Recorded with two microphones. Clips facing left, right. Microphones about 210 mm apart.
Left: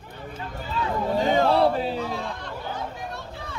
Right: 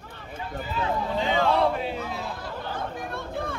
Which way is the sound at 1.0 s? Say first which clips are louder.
Left 5 dB; 45° left (ahead or behind).